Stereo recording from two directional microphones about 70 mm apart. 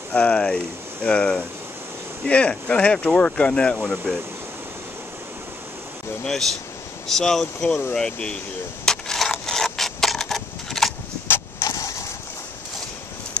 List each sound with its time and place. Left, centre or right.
0.1 s speech: centre
6.2 s speech: centre
8.8 s a sound: centre
11.6 s creak: left